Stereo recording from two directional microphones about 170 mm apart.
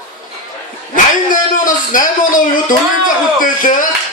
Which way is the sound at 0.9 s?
50° left (ahead or behind).